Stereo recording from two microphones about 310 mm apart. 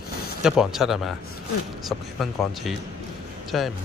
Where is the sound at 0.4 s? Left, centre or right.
Centre.